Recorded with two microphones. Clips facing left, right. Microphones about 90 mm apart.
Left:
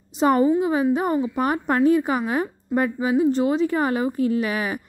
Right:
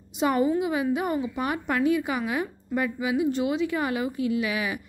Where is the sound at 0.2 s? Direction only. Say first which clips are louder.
Left 5 dB; 35° left (ahead or behind).